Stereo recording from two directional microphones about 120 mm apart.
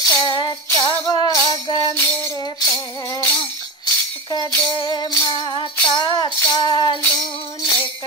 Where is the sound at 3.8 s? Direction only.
35° left (ahead or behind).